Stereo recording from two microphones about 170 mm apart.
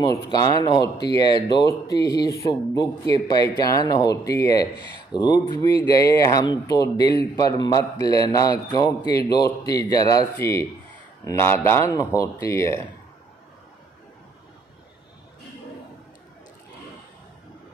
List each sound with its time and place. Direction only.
0.0 s speech: 20° left (ahead or behind)